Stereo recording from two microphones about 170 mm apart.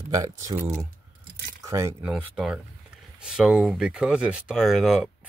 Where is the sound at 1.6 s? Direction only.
15° right (ahead or behind).